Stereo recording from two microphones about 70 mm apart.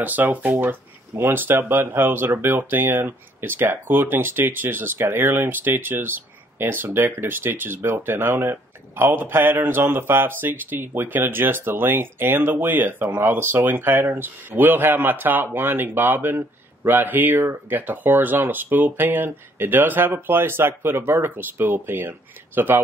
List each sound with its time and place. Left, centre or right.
0.0 s speech: right